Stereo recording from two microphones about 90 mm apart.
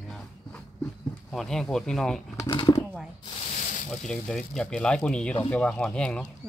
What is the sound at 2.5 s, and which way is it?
Speech, 50° left (ahead or behind).